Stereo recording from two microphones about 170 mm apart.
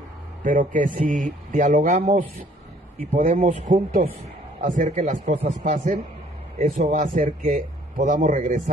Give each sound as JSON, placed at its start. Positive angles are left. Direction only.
{"t": 0.4, "sound": "a man's voice", "side_deg": -55}
{"t": 6.6, "sound": "a man's voice", "side_deg": -45}